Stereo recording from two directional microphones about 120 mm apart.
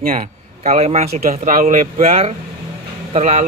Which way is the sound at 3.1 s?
75° right (ahead or behind).